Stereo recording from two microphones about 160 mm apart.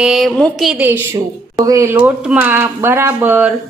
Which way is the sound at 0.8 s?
15° right (ahead or behind).